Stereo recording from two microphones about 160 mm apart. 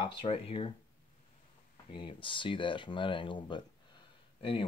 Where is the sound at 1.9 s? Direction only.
30° left (ahead or behind).